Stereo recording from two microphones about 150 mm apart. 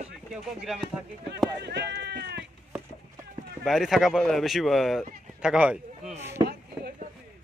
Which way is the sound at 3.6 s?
Centre (ahead or behind).